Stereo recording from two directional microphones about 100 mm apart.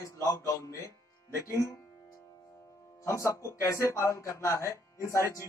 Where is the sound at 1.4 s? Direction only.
30° left (ahead or behind).